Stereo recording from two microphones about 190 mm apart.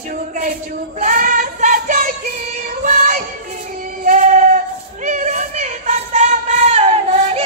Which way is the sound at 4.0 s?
40° right (ahead or behind).